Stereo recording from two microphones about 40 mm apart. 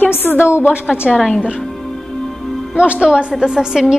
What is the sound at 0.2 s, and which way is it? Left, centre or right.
Speech, left.